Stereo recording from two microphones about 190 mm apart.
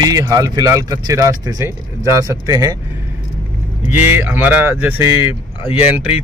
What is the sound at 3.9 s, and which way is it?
Speech, 10° right (ahead or behind).